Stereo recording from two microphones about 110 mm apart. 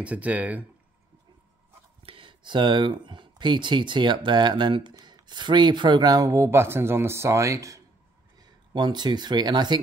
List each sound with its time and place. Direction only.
0.0 s speech: 15° right (ahead or behind)
2.0 s a sound: 50° right (ahead or behind)
3.1 s speech: 45° right (ahead or behind); by 7.8 s 30° right (ahead or behind)
8.4 s speech: 40° right (ahead or behind)